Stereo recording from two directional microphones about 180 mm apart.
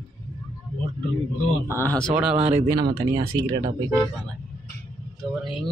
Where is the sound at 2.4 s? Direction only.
40° right (ahead or behind).